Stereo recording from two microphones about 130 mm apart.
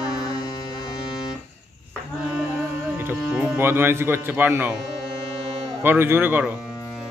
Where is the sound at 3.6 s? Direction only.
15° right (ahead or behind).